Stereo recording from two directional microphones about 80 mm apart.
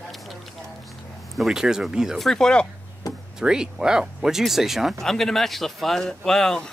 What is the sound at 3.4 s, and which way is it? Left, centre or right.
Speech, centre.